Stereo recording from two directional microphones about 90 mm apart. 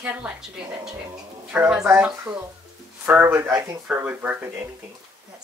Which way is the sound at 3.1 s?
25° right (ahead or behind).